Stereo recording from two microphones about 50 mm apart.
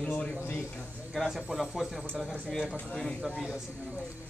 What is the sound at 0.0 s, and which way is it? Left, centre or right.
Speech, left.